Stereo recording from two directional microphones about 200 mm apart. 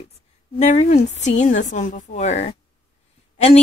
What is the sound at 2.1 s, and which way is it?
Speech, 35° left (ahead or behind).